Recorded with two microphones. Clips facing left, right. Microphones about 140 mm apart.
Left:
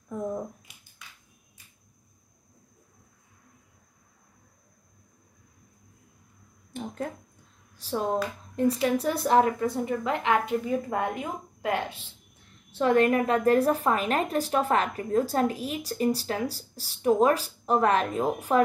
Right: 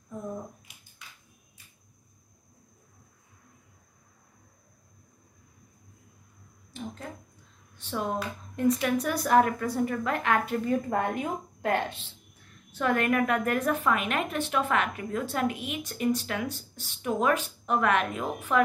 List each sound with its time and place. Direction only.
6.7 s a sound: 55° left (ahead or behind)
7.7 s a woman's voice: 35° left (ahead or behind)
10.6 s a woman's voice: 5° left (ahead or behind)
12.7 s a woman's voice: 30° left (ahead or behind)